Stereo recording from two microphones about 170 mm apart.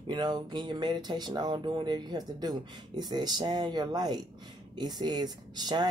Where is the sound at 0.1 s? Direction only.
25° right (ahead or behind).